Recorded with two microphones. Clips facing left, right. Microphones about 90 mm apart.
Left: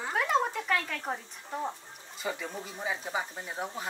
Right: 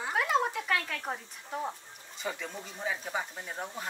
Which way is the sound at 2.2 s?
5° left (ahead or behind).